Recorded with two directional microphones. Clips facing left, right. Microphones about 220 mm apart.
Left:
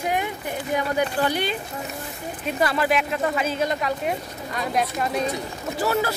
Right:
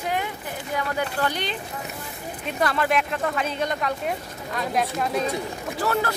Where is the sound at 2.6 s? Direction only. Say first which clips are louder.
Left 1 dB; 5° left (ahead or behind).